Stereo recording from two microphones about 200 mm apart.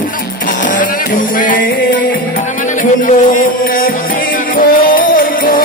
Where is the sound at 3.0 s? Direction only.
40° left (ahead or behind).